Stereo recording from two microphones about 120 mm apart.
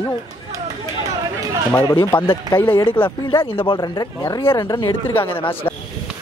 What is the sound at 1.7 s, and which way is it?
Speech, 30° left (ahead or behind).